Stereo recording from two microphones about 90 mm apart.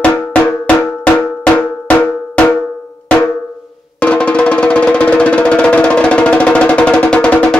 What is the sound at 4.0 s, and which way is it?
Music, 15° left (ahead or behind).